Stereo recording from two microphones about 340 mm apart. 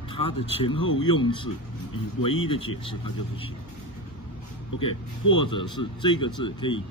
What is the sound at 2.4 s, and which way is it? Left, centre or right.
Speech, centre.